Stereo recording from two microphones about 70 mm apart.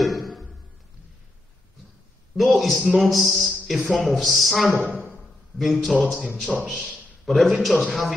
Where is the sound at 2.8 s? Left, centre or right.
Centre.